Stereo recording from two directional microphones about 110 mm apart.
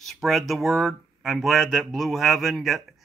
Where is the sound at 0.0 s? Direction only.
Centre (ahead or behind).